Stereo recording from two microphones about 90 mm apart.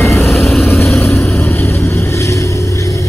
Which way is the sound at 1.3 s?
30° left (ahead or behind).